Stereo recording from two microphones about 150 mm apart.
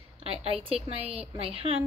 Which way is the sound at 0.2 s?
40° right (ahead or behind).